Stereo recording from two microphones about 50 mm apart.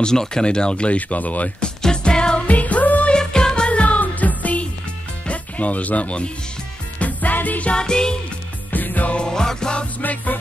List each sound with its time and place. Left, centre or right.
0.0 s speech: centre; by 1.5 s left
1.6 s music: centre
2.4 s music: left
3.1 s music: centre; by 4.6 s left
5.2 s speech: left
7.0 s music: left
7.7 s music: centre
8.7 s music: left
9.1 s music: centre
10.0 s music: left